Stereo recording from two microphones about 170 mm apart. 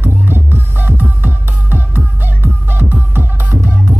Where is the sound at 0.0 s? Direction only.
15° right (ahead or behind).